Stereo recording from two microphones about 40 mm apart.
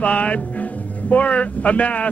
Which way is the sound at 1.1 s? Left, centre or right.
Left.